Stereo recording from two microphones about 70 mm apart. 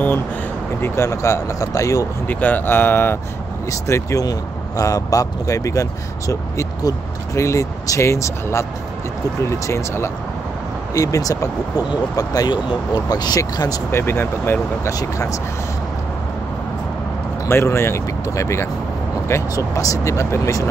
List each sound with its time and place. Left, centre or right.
0.7 s speech: left
2.2 s speech: left
3.7 s speech: left
4.2 s speech: left
11.0 s speech: left
12.2 s speech: left
13.9 s speech: left
17.5 s speech: left